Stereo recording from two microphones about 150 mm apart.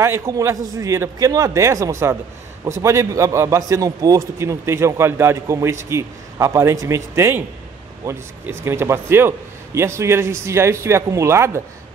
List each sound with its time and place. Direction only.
0.0 s a man's voice: 20° right (ahead or behind)